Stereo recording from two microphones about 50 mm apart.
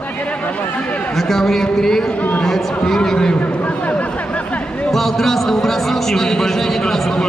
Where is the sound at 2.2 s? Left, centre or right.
Left.